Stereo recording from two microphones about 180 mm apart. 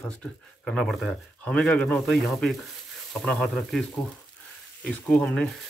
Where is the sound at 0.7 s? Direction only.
5° left (ahead or behind).